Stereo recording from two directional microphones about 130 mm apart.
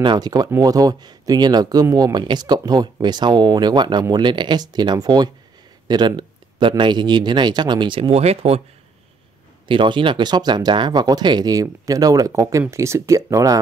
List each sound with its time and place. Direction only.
0.0 s speech: 35° right (ahead or behind)
5.9 s a sound: 35° right (ahead or behind)
6.8 s speech: 35° right (ahead or behind); by 8.6 s 55° right (ahead or behind)
9.7 s speech: 40° right (ahead or behind)